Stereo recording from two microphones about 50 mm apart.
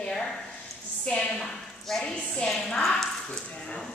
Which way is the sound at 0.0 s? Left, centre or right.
Centre.